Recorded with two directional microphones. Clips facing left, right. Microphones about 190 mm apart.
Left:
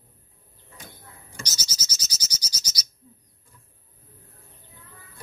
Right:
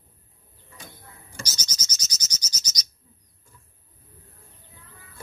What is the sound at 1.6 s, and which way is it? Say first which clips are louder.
Frog: even; 5° left (ahead or behind).